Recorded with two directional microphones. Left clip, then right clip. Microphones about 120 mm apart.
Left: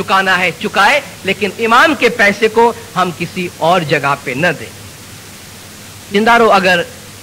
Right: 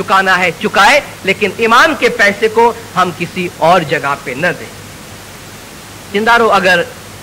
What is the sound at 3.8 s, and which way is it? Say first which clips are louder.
Speech: left 1 dB; 45° left (ahead or behind).